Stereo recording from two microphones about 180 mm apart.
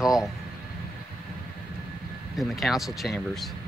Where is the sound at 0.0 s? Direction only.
Centre (ahead or behind).